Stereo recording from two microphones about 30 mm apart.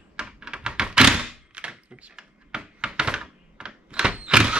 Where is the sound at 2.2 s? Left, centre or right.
Right.